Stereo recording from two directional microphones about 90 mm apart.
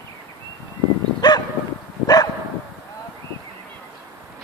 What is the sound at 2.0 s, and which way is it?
Bow-wow, 45° left (ahead or behind).